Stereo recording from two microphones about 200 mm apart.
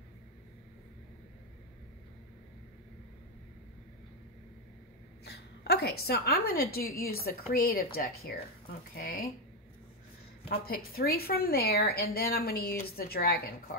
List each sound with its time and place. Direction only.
5.2 s a woman's voice: 55° left (ahead or behind)
10.5 s a woman's voice: 50° left (ahead or behind)